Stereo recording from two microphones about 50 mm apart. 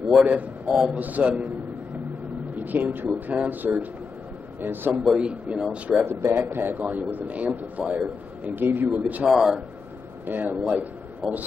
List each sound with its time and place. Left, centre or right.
0.7 s speech: right
2.5 s a man's voice: right
5.1 s speech: right
6.0 s a man's voice: right
8.5 s a man's voice: right
9.3 s a man's voice: centre
10.2 s a man's voice: right
11.2 s a man's voice: centre